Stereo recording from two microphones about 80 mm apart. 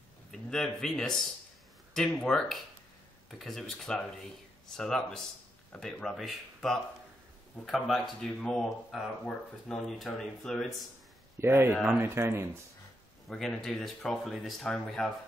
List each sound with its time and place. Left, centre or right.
0.3 s a man's voice: centre
11.3 s speech: right
13.3 s speech: centre